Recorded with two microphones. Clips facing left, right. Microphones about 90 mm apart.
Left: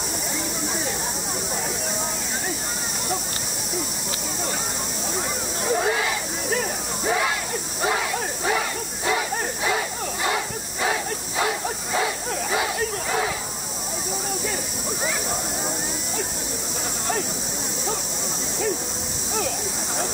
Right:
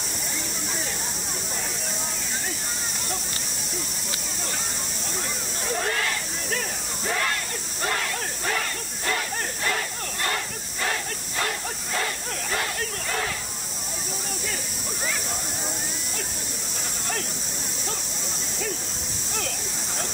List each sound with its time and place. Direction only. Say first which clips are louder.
5.7 s snake: left 4 dB; 10° left (ahead or behind)
8.5 s battle cry: left 4 dB; 10° left (ahead or behind)